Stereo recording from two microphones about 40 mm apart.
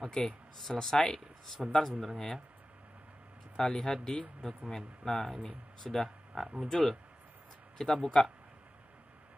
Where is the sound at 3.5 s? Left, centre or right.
Centre.